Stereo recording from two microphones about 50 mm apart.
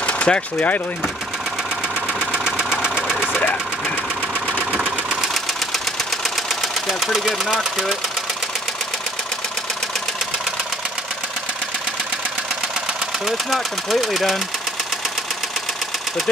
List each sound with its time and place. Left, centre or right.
0.0 s speech: left
2.1 s engine: centre
6.5 s engine knocking: centre
7.5 s speech: centre
13.2 s speech: centre